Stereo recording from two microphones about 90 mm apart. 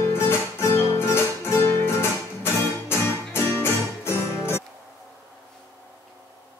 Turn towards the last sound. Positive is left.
turn(degrees=30)  # may be behind; listen again after turning